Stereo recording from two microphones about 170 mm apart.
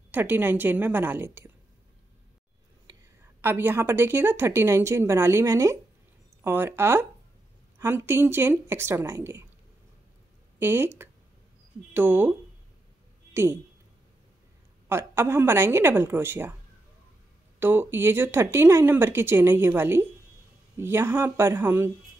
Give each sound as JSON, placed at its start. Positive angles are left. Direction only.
{"t": 0.1, "sound": "speech", "side_deg": -10}
{"t": 2.9, "sound": "a sound", "side_deg": -25}
{"t": 3.3, "sound": "speech", "side_deg": -15}
{"t": 10.6, "sound": "a woman's voice", "side_deg": -15}
{"t": 14.9, "sound": "speech", "side_deg": -15}
{"t": 17.6, "sound": "speech", "side_deg": -15}